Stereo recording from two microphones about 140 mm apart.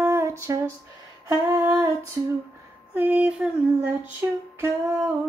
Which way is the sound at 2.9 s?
10° right (ahead or behind).